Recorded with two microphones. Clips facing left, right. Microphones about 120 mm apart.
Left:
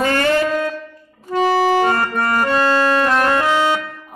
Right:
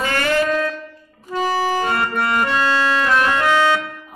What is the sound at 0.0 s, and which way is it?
Shofar, 35° left (ahead or behind).